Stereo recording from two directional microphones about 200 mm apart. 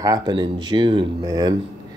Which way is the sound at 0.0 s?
20° right (ahead or behind).